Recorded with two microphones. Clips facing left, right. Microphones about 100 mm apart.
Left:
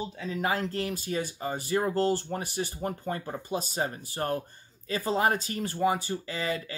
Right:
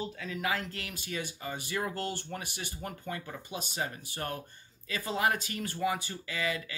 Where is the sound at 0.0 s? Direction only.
30° left (ahead or behind).